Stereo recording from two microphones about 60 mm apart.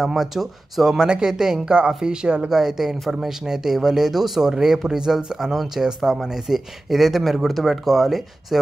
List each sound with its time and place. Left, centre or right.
0.0 s speech: centre